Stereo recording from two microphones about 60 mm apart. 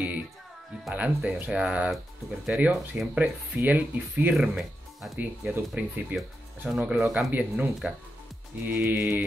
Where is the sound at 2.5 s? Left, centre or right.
Right.